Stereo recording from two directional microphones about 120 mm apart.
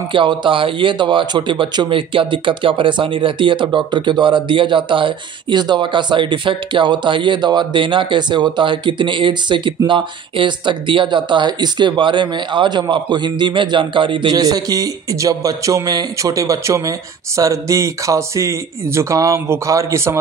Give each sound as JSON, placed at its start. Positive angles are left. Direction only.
{"t": 0.1, "sound": "a man's voice", "side_deg": -40}